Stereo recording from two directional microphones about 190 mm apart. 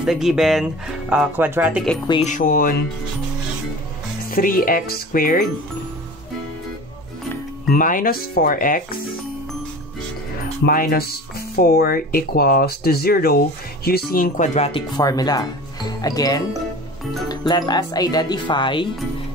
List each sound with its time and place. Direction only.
0.0 s speech: centre (ahead or behind)
2.2 s speech: 45° left (ahead or behind)
4.3 s speech: 50° left (ahead or behind)
7.7 s speech: 45° left (ahead or behind)
10.6 s speech: 50° left (ahead or behind); by 14.8 s 35° left (ahead or behind)
15.0 s speech: 20° left (ahead or behind)